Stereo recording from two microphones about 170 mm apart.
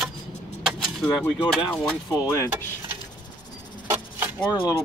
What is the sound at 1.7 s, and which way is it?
Speech, 5° left (ahead or behind).